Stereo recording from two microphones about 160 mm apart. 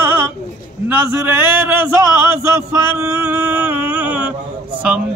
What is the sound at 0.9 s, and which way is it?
A man's voice, 10° right (ahead or behind).